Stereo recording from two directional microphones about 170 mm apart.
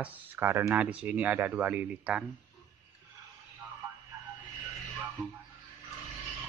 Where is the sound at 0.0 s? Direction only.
10° right (ahead or behind).